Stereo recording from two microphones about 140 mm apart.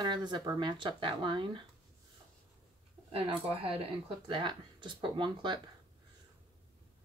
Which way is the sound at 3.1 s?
45° right (ahead or behind).